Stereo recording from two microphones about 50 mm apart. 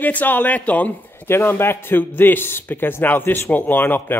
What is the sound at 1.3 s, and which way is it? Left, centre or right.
A man's voice, left.